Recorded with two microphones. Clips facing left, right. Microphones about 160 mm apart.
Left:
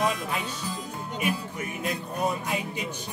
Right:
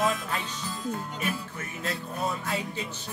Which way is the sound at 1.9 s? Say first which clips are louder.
Left 2 dB; 15° left (ahead or behind).